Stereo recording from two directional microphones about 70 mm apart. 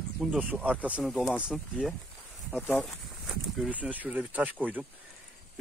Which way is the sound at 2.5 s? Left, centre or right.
Left.